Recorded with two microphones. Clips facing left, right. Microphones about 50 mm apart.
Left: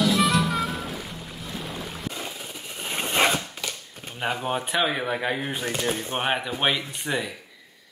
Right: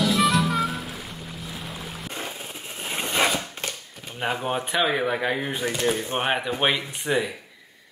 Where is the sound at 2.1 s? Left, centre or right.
Right.